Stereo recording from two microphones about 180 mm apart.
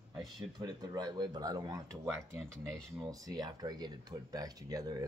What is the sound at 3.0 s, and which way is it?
Speech, 20° right (ahead or behind).